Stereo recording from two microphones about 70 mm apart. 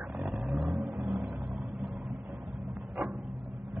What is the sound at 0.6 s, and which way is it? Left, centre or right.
Vehicle, right.